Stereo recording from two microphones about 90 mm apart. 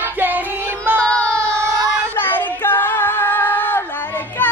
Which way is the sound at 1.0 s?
10° left (ahead or behind).